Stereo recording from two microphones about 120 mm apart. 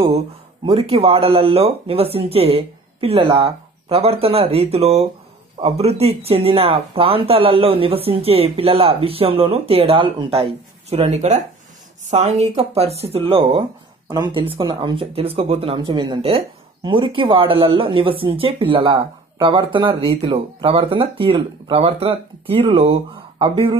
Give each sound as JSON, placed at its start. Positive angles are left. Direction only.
{"t": 0.7, "sound": "speech", "side_deg": -55}
{"t": 14.1, "sound": "speech", "side_deg": -35}
{"t": 14.4, "sound": "speech", "side_deg": -50}
{"t": 15.1, "sound": "speech", "side_deg": -55}
{"t": 15.9, "sound": "speech", "side_deg": -40}
{"t": 16.2, "sound": "speech", "side_deg": -55}
{"t": 16.8, "sound": "speech", "side_deg": -45}